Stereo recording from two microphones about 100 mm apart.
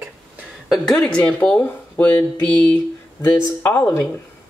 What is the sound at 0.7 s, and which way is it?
Speech, 5° left (ahead or behind).